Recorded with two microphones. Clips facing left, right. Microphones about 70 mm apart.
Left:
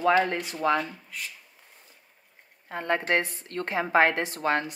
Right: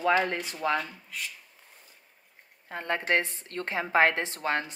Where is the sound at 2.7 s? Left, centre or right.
Left.